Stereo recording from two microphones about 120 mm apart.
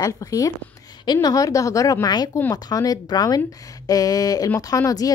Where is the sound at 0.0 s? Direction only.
30° left (ahead or behind).